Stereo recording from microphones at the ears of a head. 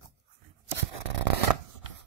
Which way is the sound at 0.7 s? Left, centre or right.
Right.